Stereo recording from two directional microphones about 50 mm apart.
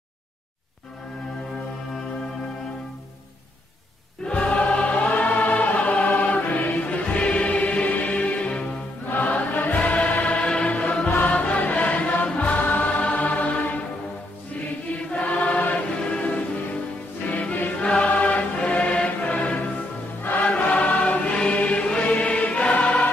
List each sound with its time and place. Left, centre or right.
4.3 s choir: left
11.1 s music: left
15.0 s choir: left
16.0 s music: left
20.4 s choir: left
21.4 s music: left